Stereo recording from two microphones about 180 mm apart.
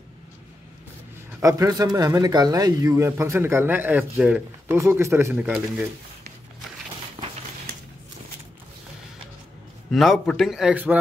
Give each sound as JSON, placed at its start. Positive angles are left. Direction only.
{"t": 1.4, "sound": "speech", "side_deg": -15}
{"t": 9.8, "sound": "a man's voice", "side_deg": 0}